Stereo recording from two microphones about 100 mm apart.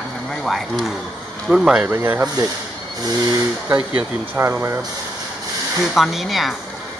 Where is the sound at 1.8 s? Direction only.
20° right (ahead or behind).